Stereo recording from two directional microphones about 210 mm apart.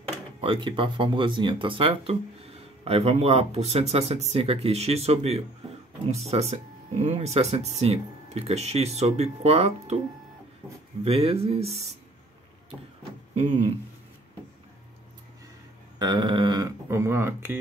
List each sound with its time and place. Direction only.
0.4 s speech: 25° right (ahead or behind)
11.1 s speech: 30° right (ahead or behind)
13.3 s a sound: 30° right (ahead or behind)
16.0 s speech: 20° right (ahead or behind)